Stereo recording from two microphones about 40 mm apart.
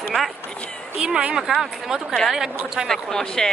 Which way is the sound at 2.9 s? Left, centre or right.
Centre.